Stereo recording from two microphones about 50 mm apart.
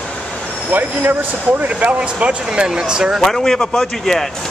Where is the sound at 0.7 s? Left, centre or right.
Right; by 3.2 s centre.